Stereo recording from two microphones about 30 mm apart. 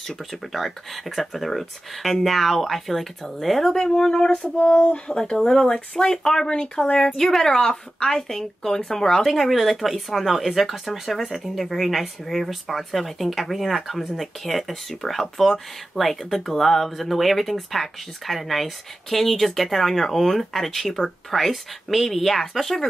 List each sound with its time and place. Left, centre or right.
0.5 s speech: centre
3.7 s speech: left
4.6 s a sound: left
5.2 s speech: left
6.5 s speech: left
7.2 s speech: centre
7.5 s speech: left
9.2 s speech: centre